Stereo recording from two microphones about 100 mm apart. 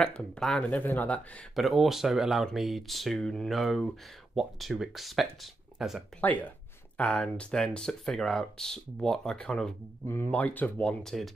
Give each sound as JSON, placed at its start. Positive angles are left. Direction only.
{"t": 0.0, "sound": "speech", "side_deg": 10}
{"t": 1.5, "sound": "speech", "side_deg": 0}
{"t": 6.2, "sound": "speech", "side_deg": 15}
{"t": 10.0, "sound": "speech", "side_deg": 20}